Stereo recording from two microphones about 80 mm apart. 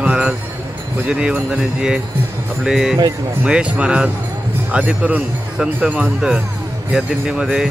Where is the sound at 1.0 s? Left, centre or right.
Centre.